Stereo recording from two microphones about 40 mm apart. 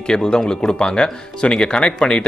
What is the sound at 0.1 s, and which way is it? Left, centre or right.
Speech, centre.